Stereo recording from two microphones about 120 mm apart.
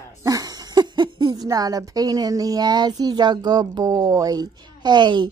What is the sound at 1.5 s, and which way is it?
Speech, 30° right (ahead or behind).